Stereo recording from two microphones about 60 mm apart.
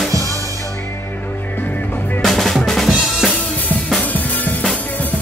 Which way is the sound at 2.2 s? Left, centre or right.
Centre.